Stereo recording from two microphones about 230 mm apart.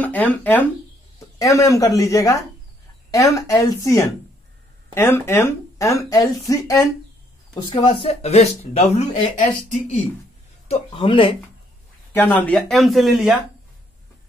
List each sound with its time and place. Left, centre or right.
0.0 s speech: centre
7.7 s speech: left
12.1 s speech: centre